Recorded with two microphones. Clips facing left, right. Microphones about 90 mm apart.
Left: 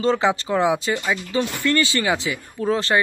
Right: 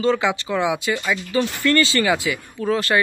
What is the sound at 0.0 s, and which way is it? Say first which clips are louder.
Speech: even; 35° left (ahead or behind).